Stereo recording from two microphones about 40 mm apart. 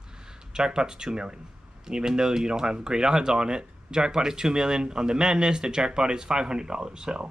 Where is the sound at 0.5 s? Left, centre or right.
Centre.